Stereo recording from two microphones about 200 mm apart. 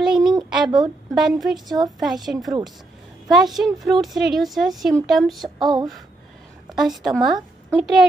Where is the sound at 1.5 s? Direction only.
20° right (ahead or behind).